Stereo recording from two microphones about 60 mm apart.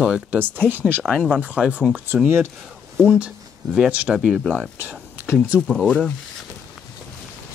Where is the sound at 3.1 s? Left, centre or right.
Centre.